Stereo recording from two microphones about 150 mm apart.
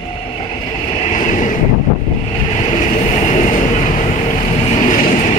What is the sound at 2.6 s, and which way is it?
Vehicle, 40° left (ahead or behind).